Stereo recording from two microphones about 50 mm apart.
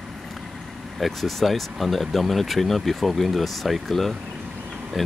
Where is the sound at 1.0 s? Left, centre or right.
Centre.